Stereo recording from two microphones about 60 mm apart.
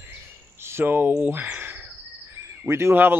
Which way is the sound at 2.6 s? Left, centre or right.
Right.